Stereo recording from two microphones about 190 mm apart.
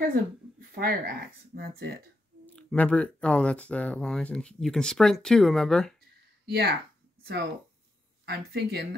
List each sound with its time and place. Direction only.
0.1 s speech: 50° right (ahead or behind)
2.4 s speech: 5° left (ahead or behind)
6.4 s speech: 55° right (ahead or behind)
8.3 s speech: 55° right (ahead or behind)